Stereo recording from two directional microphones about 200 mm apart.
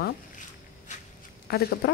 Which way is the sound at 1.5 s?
50° left (ahead or behind).